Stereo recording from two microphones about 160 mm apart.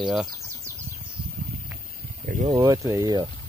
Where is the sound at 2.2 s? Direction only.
50° right (ahead or behind).